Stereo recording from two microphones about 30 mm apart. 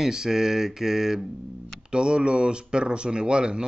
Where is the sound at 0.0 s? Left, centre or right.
Centre.